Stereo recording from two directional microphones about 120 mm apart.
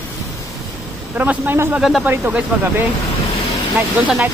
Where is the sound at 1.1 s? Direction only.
15° right (ahead or behind).